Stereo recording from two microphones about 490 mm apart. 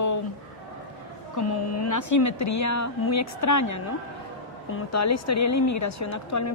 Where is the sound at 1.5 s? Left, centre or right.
Left.